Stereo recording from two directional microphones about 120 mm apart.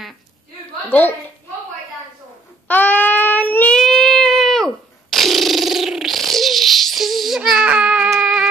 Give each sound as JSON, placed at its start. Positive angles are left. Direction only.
{"t": 0.8, "sound": "a woman's voice", "side_deg": 15}
{"t": 2.7, "sound": "child singing", "side_deg": 15}